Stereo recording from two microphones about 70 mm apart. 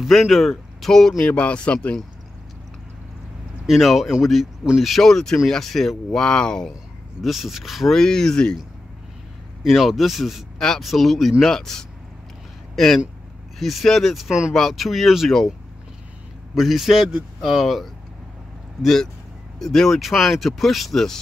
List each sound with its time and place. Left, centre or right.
0.0 s speech: centre
1.2 s speech: centre
3.6 s speech: centre
7.2 s speech: centre
9.6 s speech: centre
16.5 s speech: centre